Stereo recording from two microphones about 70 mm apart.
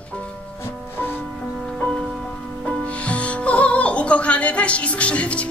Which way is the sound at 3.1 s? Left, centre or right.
Centre.